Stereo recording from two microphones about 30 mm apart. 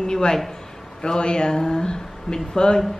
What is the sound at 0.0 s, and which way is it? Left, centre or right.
A woman's voice, left.